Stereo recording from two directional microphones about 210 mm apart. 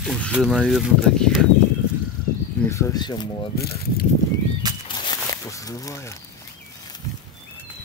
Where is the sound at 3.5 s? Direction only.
50° left (ahead or behind).